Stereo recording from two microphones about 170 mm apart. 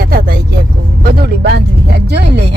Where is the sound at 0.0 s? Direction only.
60° right (ahead or behind).